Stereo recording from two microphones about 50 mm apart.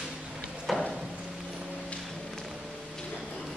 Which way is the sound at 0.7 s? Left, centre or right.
Centre.